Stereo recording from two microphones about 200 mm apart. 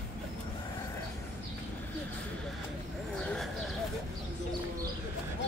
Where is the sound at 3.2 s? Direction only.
5° left (ahead or behind).